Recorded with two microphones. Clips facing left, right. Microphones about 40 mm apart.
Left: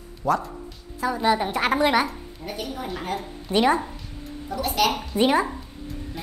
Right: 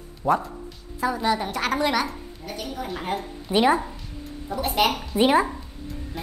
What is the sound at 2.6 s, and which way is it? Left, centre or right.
A woman's voice, centre.